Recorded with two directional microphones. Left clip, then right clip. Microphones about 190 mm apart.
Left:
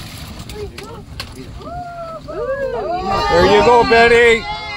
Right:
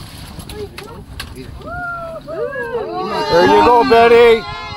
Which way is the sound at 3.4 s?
5° left (ahead or behind).